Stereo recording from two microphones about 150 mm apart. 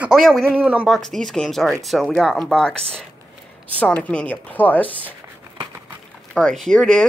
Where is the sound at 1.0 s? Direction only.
5° left (ahead or behind).